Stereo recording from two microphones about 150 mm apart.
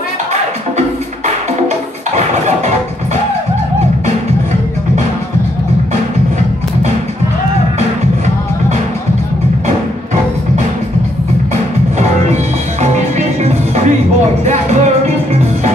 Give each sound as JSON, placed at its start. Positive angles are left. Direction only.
{"t": 0.3, "sound": "music", "side_deg": -45}
{"t": 12.8, "sound": "music", "side_deg": -50}